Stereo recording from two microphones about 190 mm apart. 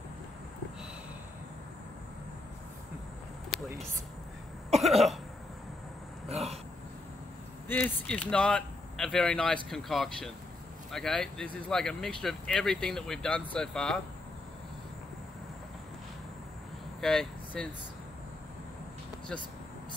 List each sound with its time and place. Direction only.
4.6 s cough: 35° right (ahead or behind)
7.6 s speech: 10° left (ahead or behind)
17.0 s speech: centre (ahead or behind)